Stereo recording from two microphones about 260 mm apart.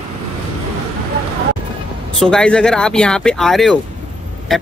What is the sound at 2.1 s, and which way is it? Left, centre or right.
Speech, centre.